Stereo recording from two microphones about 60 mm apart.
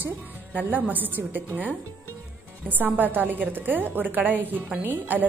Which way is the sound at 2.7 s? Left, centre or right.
Right.